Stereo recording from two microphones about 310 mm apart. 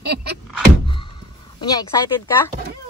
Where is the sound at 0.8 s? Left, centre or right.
Centre.